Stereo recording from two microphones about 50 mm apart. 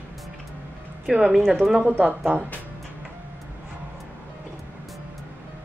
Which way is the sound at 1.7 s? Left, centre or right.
Right.